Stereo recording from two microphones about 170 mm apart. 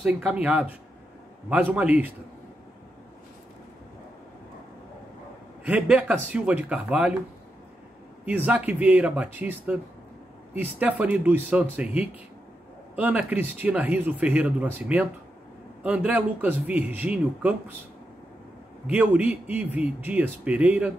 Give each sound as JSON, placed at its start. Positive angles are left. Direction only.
{"t": 0.0, "sound": "speech", "side_deg": -10}
{"t": 5.7, "sound": "speech", "side_deg": -5}
{"t": 8.3, "sound": "speech", "side_deg": -10}
{"t": 18.9, "sound": "speech", "side_deg": -10}